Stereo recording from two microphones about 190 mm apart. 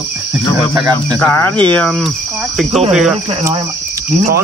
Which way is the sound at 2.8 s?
5° right (ahead or behind).